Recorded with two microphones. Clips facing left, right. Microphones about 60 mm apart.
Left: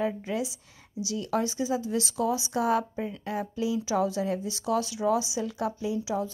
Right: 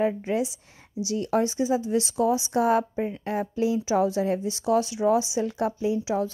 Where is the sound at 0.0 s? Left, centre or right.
Right.